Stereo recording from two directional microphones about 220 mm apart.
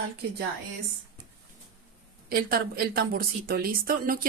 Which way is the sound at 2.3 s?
40° right (ahead or behind).